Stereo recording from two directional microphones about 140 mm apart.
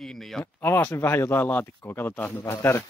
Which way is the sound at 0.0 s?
5° left (ahead or behind).